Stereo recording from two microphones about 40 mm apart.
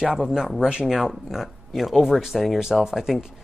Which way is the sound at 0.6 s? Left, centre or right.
Right.